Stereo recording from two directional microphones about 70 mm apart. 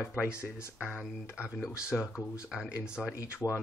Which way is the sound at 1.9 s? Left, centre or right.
Centre.